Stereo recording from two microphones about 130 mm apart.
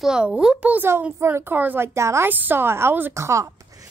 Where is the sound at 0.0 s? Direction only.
5° right (ahead or behind); by 3.9 s 25° right (ahead or behind).